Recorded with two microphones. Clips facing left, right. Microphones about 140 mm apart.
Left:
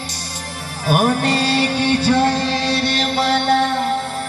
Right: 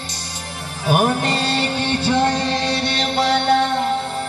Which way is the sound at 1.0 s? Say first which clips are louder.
Left 2 dB; 15° right (ahead or behind).